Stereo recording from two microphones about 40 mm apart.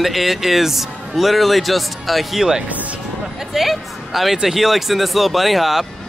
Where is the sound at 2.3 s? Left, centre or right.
Centre.